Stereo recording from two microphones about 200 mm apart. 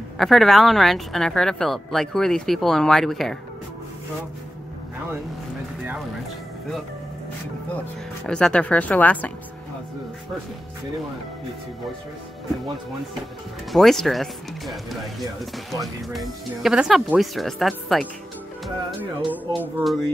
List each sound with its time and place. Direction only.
0.2 s speech: centre (ahead or behind)
8.3 s speech: 5° left (ahead or behind)
13.7 s speech: centre (ahead or behind)
18.9 s music: 5° right (ahead or behind)
19.6 s speech: centre (ahead or behind)